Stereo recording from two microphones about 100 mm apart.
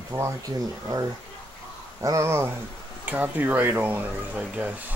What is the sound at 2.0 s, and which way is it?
Speech, 30° right (ahead or behind).